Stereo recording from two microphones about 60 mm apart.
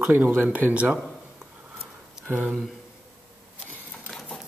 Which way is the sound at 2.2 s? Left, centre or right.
Right.